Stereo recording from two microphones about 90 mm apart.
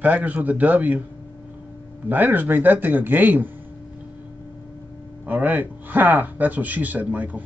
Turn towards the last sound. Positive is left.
turn(degrees=-20)  # may be behind; listen again after turning